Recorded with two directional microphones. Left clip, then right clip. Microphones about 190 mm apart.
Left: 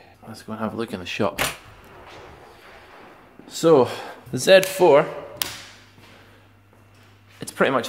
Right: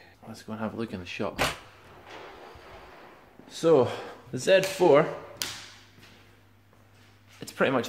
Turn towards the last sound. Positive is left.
turn(degrees=10)  # may be behind; listen again after turning